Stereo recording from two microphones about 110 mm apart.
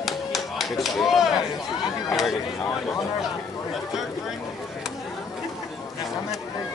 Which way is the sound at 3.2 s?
Centre (ahead or behind).